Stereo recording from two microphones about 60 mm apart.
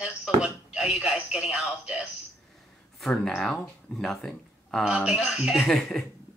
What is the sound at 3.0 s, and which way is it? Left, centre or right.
Speech, centre.